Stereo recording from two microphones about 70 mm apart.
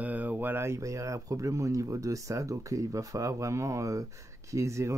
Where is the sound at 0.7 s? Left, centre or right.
Right.